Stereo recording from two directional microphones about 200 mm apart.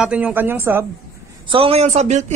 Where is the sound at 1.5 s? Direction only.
30° right (ahead or behind).